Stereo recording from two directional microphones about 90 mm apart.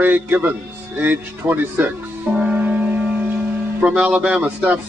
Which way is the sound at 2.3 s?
15° right (ahead or behind).